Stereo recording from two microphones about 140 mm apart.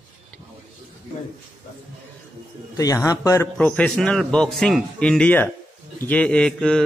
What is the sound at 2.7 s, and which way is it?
Speech, 25° left (ahead or behind).